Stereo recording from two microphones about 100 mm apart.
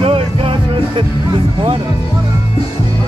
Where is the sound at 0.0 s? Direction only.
65° right (ahead or behind).